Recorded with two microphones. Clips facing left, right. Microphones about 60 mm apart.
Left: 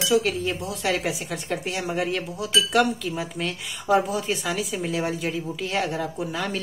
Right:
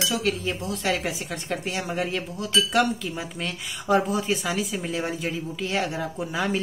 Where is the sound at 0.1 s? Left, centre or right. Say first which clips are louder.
Left 4 dB; centre.